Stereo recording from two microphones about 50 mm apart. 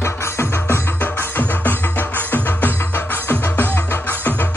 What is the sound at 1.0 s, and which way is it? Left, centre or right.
Music, left.